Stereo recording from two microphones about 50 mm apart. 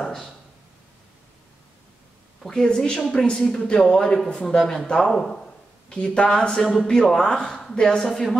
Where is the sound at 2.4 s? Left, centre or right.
Centre.